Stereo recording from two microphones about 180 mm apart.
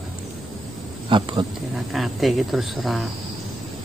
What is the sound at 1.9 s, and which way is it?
Speech, centre (ahead or behind).